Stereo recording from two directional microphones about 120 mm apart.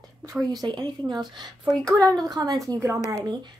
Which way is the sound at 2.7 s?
20° right (ahead or behind).